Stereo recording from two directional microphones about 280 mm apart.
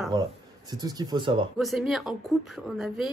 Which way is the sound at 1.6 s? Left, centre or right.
Centre.